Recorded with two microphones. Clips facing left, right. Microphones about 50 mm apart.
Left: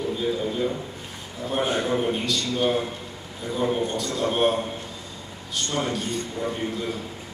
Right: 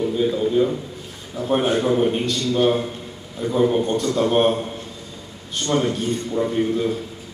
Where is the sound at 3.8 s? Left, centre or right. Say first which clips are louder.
Right 5 dB; right.